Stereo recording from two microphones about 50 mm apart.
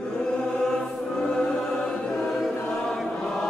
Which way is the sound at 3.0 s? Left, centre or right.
Centre.